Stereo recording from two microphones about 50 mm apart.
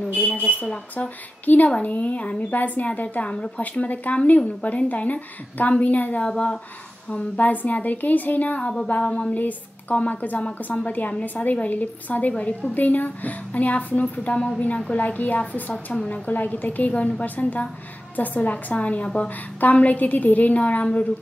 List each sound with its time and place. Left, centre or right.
0.1 s a woman's voice: left
7.3 s a woman's voice: left; by 9.3 s centre
9.3 s a woman's voice: left